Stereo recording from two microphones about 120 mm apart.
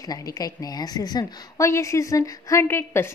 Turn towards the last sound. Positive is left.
turn(degrees=20)  # may be behind; listen again after turning